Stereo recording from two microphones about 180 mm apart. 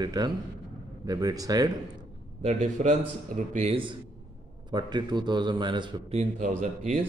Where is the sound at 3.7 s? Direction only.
25° right (ahead or behind).